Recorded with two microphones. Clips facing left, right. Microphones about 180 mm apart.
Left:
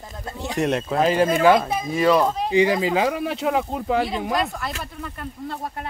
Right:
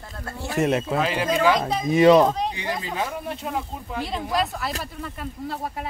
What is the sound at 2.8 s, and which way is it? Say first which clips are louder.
Speech: left 8 dB; 90° left.